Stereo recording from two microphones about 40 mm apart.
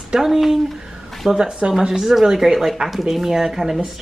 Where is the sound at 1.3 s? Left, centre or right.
Right.